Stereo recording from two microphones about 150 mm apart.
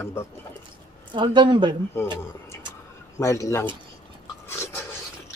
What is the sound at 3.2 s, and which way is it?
Speech, 20° left (ahead or behind).